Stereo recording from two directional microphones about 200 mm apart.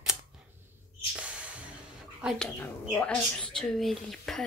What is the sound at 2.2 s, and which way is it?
Speech, 5° right (ahead or behind).